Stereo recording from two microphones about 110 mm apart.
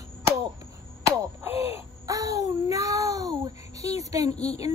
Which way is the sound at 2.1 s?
30° right (ahead or behind).